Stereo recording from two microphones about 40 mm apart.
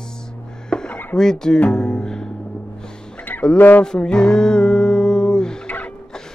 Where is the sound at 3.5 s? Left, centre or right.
Left.